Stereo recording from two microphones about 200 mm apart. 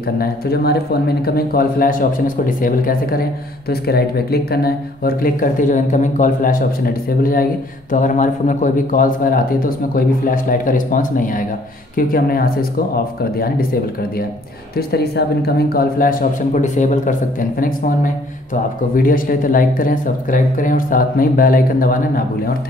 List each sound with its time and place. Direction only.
0.2 s a man's voice: 50° left (ahead or behind)
7.9 s a man's voice: 40° left (ahead or behind)
14.8 s a man's voice: 55° left (ahead or behind)